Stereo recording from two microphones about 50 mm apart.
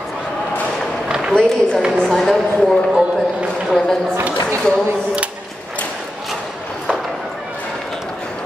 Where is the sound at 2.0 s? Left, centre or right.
Centre.